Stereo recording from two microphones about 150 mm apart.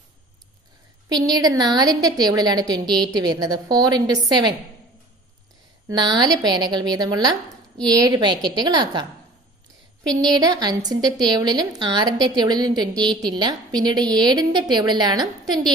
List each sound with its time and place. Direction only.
1.0 s a woman's voice: 30° right (ahead or behind)
5.9 s a woman's voice: 30° right (ahead or behind)
10.0 s a woman's voice: 30° right (ahead or behind)